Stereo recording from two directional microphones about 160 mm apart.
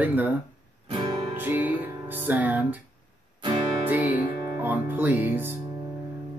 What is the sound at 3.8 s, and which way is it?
Speech, 10° right (ahead or behind).